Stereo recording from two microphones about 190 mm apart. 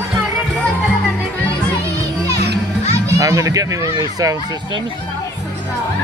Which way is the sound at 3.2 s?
15° right (ahead or behind).